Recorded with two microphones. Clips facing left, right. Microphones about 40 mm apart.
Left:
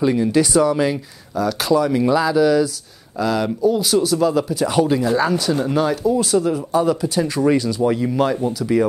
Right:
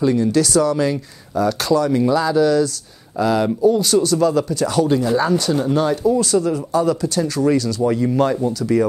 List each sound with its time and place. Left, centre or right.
0.0 s speech: centre
1.3 s speech: centre
1.7 s speech: centre
3.2 s speech: centre